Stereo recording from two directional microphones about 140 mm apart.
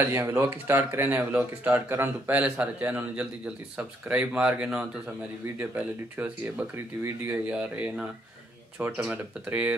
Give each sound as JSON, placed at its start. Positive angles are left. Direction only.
{"t": 0.0, "sound": "speech", "side_deg": -20}